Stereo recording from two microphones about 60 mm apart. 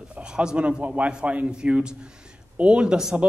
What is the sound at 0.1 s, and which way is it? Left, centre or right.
A man's voice, centre.